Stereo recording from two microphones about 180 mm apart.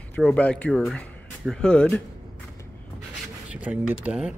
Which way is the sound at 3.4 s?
5° right (ahead or behind).